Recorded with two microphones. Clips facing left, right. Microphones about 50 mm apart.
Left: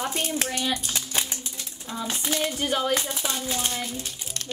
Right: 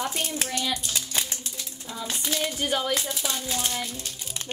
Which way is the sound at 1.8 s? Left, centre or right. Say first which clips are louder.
Left 3 dB; centre.